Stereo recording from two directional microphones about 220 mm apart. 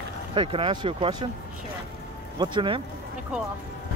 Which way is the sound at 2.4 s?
25° right (ahead or behind).